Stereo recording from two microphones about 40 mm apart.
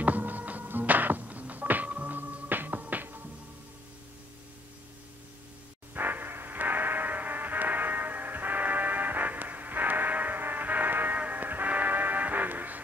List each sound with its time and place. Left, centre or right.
0.0 s music: right
2.1 s music: right
5.9 s music: right
11.1 s music: right